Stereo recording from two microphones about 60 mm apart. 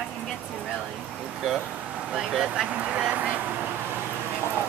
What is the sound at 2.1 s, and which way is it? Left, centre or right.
Speech, centre.